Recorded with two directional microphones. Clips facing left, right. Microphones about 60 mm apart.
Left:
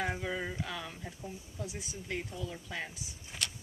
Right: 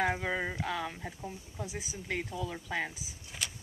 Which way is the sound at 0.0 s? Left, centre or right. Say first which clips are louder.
Right 4 dB; right.